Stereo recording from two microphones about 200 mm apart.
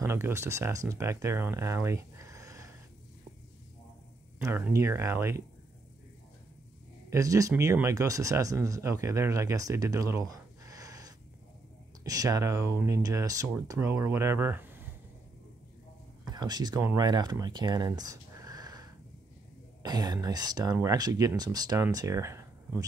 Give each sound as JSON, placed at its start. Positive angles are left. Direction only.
{"t": 0.0, "sound": "speech", "side_deg": -15}
{"t": 4.5, "sound": "speech", "side_deg": -10}
{"t": 7.1, "sound": "speech", "side_deg": -15}
{"t": 16.3, "sound": "speech", "side_deg": -20}